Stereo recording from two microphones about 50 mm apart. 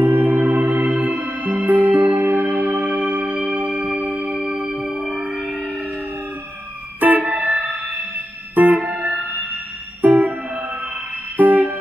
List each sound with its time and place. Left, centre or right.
0.0 s music: right
7.0 s music: right